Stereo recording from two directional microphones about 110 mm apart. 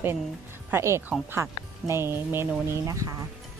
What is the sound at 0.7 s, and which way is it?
Speech, 25° right (ahead or behind).